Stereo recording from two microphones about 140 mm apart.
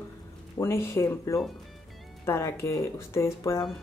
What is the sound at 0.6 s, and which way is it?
A woman's voice, 20° left (ahead or behind).